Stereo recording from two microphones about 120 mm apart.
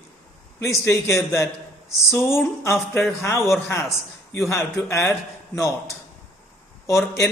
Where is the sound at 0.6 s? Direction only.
25° left (ahead or behind).